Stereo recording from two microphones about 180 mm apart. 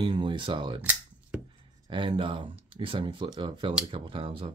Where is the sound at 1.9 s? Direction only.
30° right (ahead or behind).